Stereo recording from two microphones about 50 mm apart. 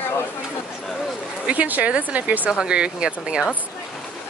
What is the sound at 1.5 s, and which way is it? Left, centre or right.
Speech, right.